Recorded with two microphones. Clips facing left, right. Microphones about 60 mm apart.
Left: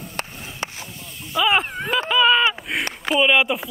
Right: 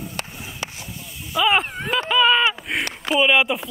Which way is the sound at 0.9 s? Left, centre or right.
Centre.